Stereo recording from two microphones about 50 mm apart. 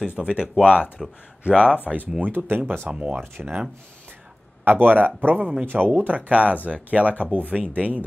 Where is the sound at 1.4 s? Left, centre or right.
Centre.